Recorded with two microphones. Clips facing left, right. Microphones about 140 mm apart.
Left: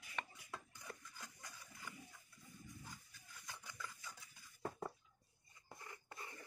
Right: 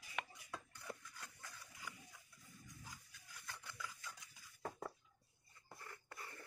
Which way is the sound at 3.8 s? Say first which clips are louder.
Right 1 dB; centre (ahead or behind).